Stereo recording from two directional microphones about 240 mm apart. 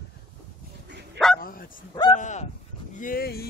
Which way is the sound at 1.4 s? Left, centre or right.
Left.